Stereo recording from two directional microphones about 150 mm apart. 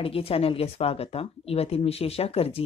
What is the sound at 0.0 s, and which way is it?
Speech, 40° left (ahead or behind).